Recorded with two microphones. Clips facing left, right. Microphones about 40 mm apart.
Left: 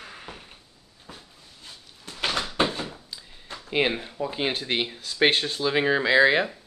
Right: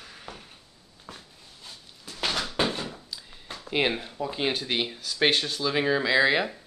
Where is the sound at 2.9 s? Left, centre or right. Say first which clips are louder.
Right 1 dB; centre.